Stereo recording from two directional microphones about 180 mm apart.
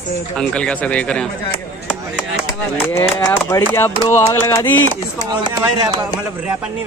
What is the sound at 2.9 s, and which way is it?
Speech, 15° left (ahead or behind).